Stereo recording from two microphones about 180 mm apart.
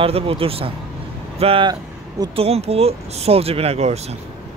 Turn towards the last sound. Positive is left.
turn(degrees=-35)  # may be behind; listen again after turning